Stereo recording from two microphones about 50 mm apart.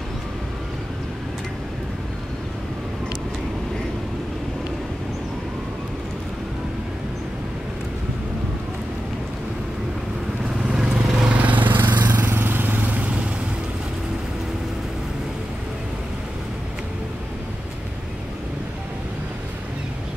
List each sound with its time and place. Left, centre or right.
10.7 s vehicle: right